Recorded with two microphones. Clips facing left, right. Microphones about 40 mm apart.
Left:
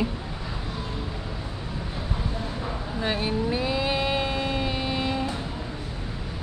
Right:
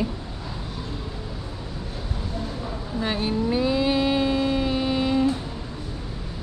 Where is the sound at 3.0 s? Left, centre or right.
Centre.